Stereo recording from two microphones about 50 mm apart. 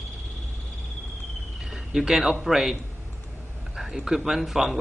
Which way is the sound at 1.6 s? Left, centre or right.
Centre.